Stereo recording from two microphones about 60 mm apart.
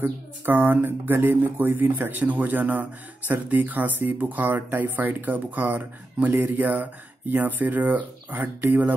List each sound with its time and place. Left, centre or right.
0.0 s speech: right